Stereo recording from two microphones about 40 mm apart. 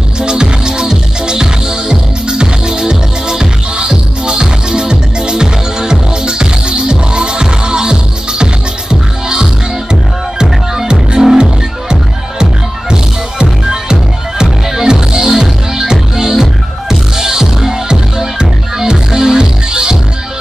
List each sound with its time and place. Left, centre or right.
0.2 s music: right
10.4 s music: centre
12.9 s music: centre